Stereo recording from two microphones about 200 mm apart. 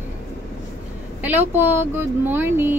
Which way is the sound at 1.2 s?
10° right (ahead or behind).